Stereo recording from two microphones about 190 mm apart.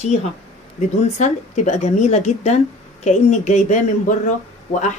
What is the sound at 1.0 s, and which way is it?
A woman's voice, 40° left (ahead or behind).